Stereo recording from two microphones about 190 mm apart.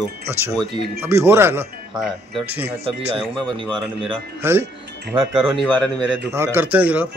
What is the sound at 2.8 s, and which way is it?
Speech, 30° right (ahead or behind).